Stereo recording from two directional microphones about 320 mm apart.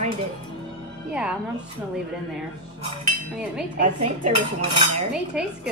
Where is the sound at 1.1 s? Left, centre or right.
Centre.